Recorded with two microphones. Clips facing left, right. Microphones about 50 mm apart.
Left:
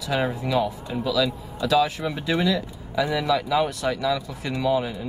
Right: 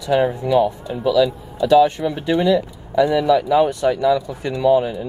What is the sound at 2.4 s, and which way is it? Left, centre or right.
Speech, right.